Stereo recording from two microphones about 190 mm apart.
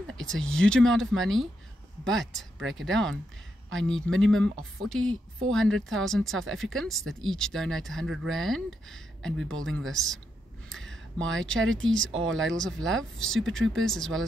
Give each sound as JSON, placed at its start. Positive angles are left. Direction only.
{"t": 0.3, "sound": "speech", "side_deg": 5}
{"t": 4.2, "sound": "speech", "side_deg": 5}
{"t": 10.7, "sound": "a sound", "side_deg": 5}
{"t": 11.2, "sound": "speech", "side_deg": -85}
{"t": 11.7, "sound": "speech", "side_deg": 5}
{"t": 12.2, "sound": "speech", "side_deg": -85}
{"t": 12.4, "sound": "speech", "side_deg": 5}